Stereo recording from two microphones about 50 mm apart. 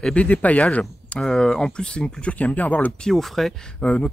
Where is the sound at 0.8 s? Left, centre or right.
Centre; by 2.9 s left.